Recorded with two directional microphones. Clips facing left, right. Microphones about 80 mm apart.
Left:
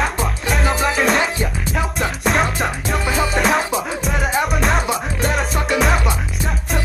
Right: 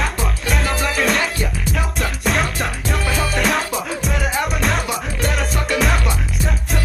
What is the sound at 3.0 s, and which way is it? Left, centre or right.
Music, left.